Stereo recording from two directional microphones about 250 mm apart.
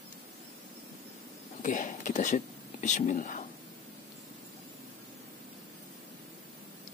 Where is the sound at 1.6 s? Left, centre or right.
Left.